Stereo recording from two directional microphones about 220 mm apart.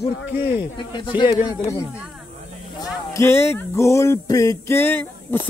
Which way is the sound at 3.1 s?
10° left (ahead or behind).